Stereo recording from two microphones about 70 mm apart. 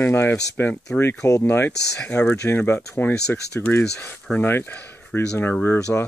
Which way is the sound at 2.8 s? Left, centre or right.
Left.